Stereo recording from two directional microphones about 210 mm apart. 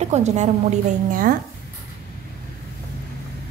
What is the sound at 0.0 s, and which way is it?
A woman's voice, 30° right (ahead or behind).